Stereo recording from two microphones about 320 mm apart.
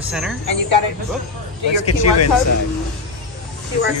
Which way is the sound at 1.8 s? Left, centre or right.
Left.